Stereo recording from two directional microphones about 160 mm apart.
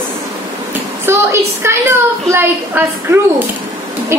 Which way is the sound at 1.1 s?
15° right (ahead or behind).